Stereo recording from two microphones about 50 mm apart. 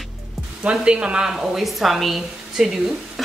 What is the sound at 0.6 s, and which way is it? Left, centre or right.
Speech, right.